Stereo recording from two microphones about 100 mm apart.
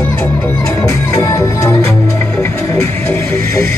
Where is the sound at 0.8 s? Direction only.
35° left (ahead or behind).